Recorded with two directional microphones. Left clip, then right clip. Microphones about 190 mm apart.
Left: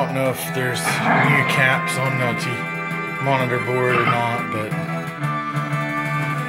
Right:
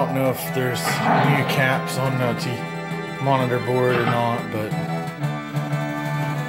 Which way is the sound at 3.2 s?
10° right (ahead or behind).